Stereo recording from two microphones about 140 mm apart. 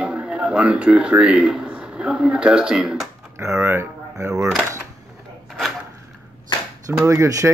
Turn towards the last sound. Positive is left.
turn(degrees=-25)  # may be behind; listen again after turning